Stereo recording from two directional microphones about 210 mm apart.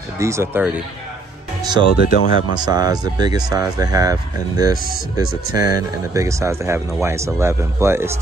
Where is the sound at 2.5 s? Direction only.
20° right (ahead or behind).